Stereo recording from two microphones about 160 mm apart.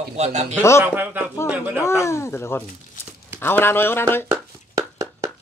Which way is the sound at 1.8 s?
15° left (ahead or behind).